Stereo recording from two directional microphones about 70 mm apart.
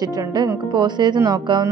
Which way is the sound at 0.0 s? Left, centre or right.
Right.